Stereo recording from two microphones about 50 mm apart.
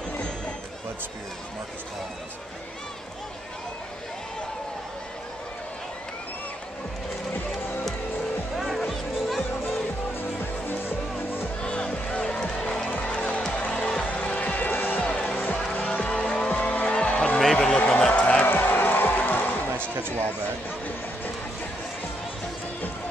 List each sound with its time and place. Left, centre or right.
8.5 s music: centre
11.6 s music: left
15.0 s music: centre
16.3 s vehicle: left
16.9 s music: left
17.4 s a sound: centre
17.7 s a sound: left
18.5 s music: left
20.0 s a sound: right